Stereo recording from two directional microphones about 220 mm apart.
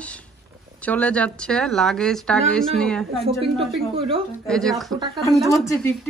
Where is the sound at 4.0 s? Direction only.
25° right (ahead or behind).